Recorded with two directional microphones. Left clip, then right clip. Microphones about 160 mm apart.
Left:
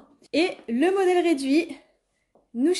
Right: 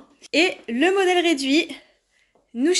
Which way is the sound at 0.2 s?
5° right (ahead or behind).